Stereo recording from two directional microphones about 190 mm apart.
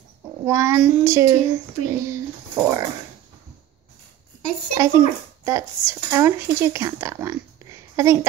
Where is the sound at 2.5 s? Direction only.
20° right (ahead or behind).